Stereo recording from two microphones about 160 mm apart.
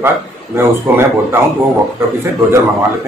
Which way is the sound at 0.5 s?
15° right (ahead or behind).